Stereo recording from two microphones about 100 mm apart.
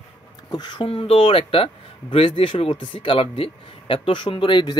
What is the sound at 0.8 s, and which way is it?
Speech, 70° left (ahead or behind).